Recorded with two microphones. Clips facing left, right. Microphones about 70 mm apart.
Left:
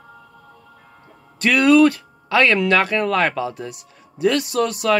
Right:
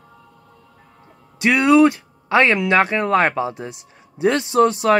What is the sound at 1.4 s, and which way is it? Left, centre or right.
Speech, right.